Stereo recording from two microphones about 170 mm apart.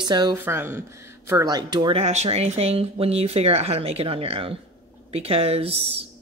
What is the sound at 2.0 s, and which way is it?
Speech, 40° right (ahead or behind).